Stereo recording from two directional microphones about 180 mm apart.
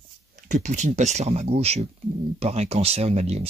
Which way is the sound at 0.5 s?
40° right (ahead or behind).